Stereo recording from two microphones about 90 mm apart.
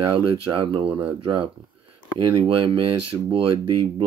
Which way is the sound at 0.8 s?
15° right (ahead or behind).